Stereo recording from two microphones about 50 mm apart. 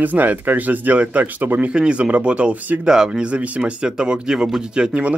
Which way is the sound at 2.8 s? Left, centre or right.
Centre.